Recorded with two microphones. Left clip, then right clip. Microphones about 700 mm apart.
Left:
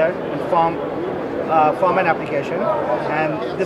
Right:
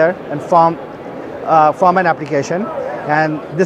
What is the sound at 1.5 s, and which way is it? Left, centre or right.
Speech, right.